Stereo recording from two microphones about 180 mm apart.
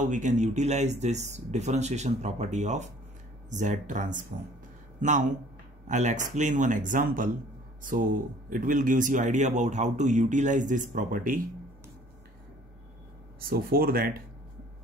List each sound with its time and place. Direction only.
0.0 s a man's voice: 45° right (ahead or behind)
5.9 s a man's voice: 45° right (ahead or behind)
8.5 s a man's voice: 50° right (ahead or behind)
13.4 s speech: 55° right (ahead or behind)